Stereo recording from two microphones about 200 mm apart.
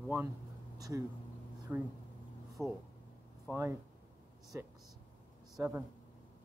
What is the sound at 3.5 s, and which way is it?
Speech, 10° right (ahead or behind).